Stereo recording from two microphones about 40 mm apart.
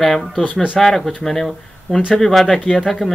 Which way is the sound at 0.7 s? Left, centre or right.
Centre.